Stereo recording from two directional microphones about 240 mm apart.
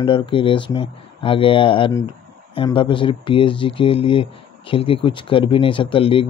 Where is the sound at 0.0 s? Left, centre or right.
Left.